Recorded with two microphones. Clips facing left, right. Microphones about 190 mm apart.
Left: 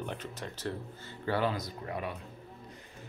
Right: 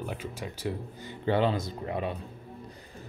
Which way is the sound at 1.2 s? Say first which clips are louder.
Right 5 dB; 20° right (ahead or behind).